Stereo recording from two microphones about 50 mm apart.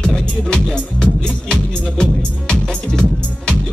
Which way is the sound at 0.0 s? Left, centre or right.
Centre.